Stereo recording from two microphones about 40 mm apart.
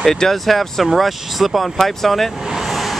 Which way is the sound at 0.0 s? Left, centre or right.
Centre.